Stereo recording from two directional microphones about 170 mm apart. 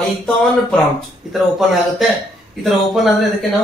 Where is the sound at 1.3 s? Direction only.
Centre (ahead or behind).